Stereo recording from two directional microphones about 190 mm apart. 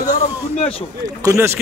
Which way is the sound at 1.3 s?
15° right (ahead or behind).